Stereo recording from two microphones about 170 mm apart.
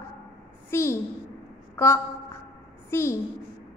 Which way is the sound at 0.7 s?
15° left (ahead or behind).